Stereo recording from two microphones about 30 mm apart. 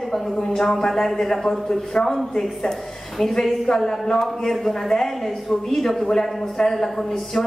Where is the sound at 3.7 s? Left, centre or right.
Left.